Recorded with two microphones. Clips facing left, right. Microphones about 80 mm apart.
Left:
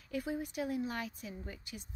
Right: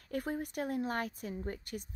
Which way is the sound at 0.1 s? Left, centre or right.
Right.